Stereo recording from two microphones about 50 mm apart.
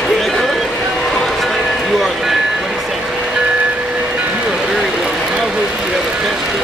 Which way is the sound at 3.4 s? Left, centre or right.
Right.